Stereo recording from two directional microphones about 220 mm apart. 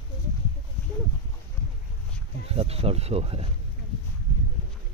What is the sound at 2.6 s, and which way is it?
Speech, 25° right (ahead or behind).